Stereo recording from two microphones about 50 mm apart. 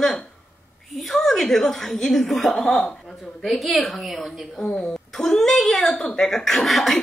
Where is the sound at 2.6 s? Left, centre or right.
Left.